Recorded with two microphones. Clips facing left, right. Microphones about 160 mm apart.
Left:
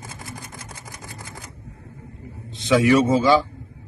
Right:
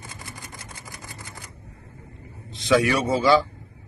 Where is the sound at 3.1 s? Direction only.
20° left (ahead or behind).